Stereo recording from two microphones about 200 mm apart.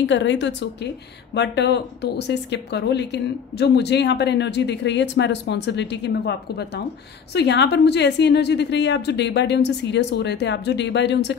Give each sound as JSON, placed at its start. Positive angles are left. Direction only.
{"t": 0.0, "sound": "a woman's voice", "side_deg": 65}